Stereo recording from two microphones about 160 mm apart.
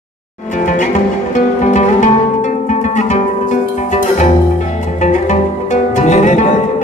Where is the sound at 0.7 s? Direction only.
50° left (ahead or behind).